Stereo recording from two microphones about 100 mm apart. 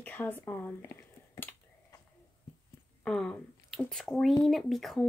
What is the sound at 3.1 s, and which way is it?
Speech, 5° left (ahead or behind).